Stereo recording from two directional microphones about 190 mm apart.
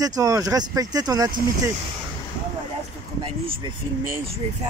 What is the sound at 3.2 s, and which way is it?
Speech, 30° right (ahead or behind).